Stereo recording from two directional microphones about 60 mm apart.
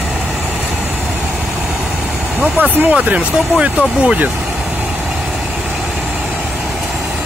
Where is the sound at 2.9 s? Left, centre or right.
Centre.